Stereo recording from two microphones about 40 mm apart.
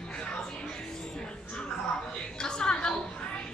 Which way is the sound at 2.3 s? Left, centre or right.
Left.